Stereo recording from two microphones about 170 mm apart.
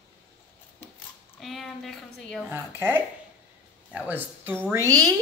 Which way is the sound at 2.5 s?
10° right (ahead or behind).